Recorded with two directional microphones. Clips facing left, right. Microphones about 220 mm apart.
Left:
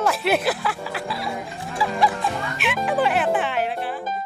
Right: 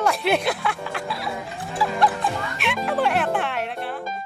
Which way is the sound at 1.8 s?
Centre (ahead or behind).